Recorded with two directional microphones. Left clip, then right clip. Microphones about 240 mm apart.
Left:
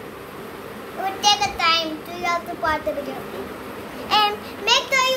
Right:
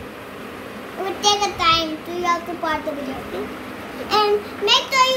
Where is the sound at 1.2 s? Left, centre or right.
Centre.